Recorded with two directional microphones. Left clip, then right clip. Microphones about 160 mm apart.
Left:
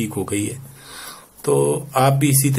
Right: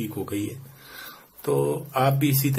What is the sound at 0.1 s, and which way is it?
Speech, 10° left (ahead or behind).